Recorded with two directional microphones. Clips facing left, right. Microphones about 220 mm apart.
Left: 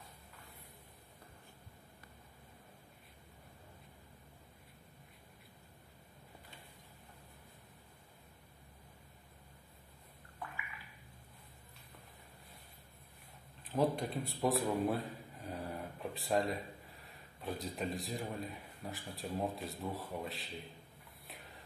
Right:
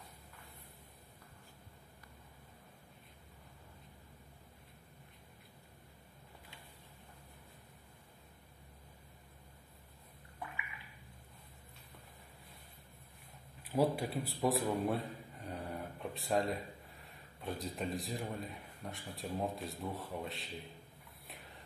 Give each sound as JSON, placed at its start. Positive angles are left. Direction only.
{"t": 13.6, "sound": "a man's voice", "side_deg": -10}